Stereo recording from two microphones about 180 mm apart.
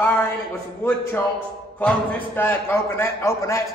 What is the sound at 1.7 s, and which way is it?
A man's voice, 10° left (ahead or behind).